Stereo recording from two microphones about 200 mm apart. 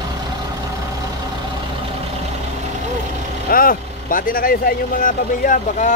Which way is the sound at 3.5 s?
45° left (ahead or behind).